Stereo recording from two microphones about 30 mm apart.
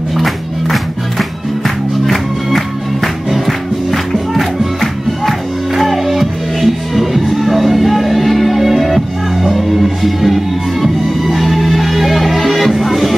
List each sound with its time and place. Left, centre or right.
0.2 s music: centre
5.8 s music: centre